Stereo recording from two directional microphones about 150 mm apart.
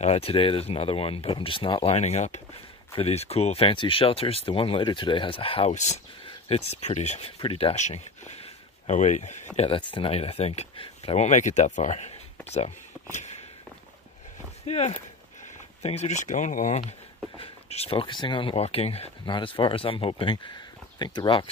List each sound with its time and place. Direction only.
0.0 s speech: 40° left (ahead or behind)
9.6 s speech: 35° left (ahead or behind); by 13.4 s 50° left (ahead or behind)
14.7 s speech: 45° left (ahead or behind); by 21.5 s 30° left (ahead or behind)